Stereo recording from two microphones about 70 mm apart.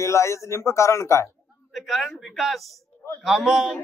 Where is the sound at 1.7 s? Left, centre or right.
Centre.